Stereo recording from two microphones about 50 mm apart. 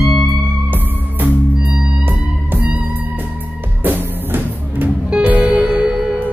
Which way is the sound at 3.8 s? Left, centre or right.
Right.